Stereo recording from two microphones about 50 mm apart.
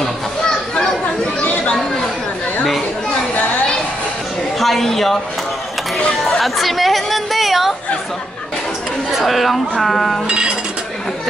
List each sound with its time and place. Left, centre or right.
1.4 s chatter: left
4.6 s a woman's voice: centre
6.4 s chatter: centre
9.2 s speech: centre
10.2 s chink: centre